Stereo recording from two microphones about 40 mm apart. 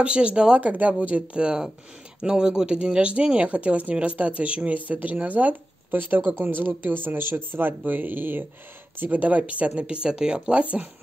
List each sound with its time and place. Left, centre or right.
0.0 s speech: right
0.6 s speech: right
2.2 s speech: centre; by 5.6 s right
5.9 s speech: right
9.1 s speech: right
10.0 s speech: right
10.5 s speech: right